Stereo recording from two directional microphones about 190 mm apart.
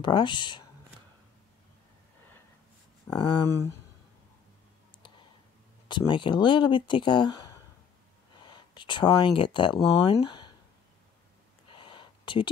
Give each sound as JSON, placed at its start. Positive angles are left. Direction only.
{"t": 0.0, "sound": "speech", "side_deg": 25}
{"t": 3.4, "sound": "speech", "side_deg": 15}
{"t": 5.9, "sound": "speech", "side_deg": 25}
{"t": 11.7, "sound": "a sound", "side_deg": 25}